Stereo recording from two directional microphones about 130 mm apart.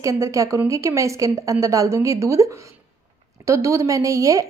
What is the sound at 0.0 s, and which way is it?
A woman's voice, 25° right (ahead or behind).